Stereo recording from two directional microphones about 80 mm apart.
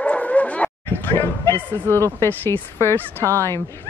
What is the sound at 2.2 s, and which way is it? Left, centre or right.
Speech, left.